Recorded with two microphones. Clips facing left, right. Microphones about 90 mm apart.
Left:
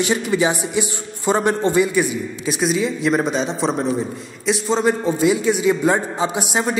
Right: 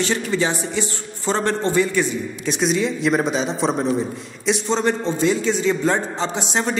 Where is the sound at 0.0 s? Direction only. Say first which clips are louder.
Left 3 dB; 15° left (ahead or behind).